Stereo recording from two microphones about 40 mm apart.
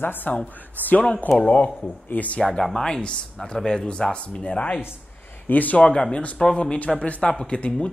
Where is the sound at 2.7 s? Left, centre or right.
Centre; by 4.8 s left.